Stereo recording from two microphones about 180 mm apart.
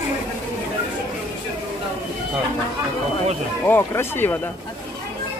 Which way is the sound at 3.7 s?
10° left (ahead or behind).